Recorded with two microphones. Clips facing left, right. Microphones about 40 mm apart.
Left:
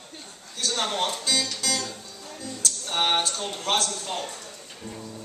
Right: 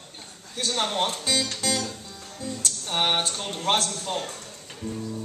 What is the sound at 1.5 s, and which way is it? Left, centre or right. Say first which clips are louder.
Music: right 1 dB; right.